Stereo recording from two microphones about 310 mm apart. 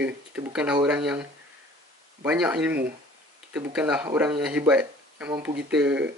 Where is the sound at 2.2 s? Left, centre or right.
Centre.